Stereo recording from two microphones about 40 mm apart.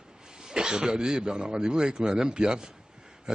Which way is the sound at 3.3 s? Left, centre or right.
Right.